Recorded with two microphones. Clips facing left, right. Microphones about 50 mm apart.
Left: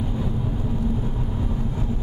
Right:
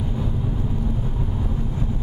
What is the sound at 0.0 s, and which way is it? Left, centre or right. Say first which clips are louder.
Vehicle: even; centre.